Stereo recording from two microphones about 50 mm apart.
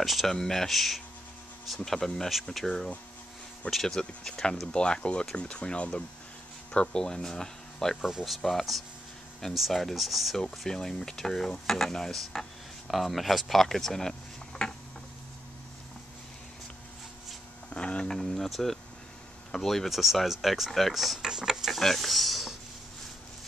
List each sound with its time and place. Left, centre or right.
0.0 s speech: centre
8.0 s speech: centre
17.7 s a sound: left
18.0 s speech: centre
21.2 s speech: centre
21.7 s speech: centre